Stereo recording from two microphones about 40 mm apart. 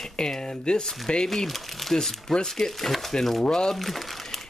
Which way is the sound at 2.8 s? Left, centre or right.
Centre.